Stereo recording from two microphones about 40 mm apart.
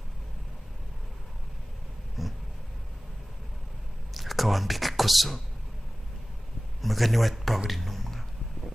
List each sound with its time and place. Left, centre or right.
2.2 s a sound: centre
4.1 s speech: centre
6.8 s a man's voice: centre